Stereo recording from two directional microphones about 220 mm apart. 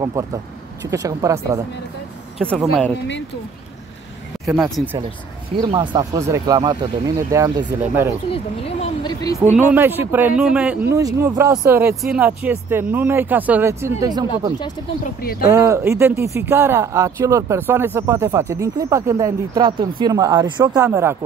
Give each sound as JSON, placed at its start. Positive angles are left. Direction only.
{"t": 0.8, "sound": "speech", "side_deg": -15}
{"t": 2.3, "sound": "speech", "side_deg": 0}
{"t": 5.6, "sound": "speech", "side_deg": -20}
{"t": 8.3, "sound": "a sound", "side_deg": 25}
{"t": 9.4, "sound": "speech", "side_deg": -10}
{"t": 15.5, "sound": "speech", "side_deg": -15}